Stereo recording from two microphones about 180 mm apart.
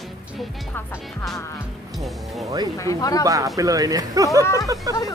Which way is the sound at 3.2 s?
20° right (ahead or behind).